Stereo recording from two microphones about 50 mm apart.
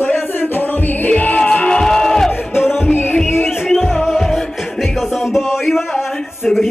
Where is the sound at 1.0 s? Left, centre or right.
Left.